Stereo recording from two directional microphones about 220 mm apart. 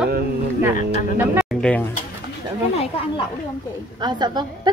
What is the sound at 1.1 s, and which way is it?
Speech, 10° right (ahead or behind).